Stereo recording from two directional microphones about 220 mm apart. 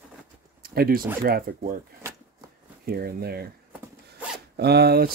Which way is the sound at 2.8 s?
45° right (ahead or behind).